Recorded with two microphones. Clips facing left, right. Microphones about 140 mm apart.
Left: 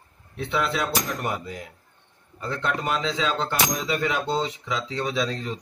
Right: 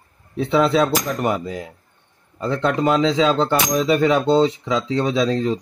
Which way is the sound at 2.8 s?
90° right.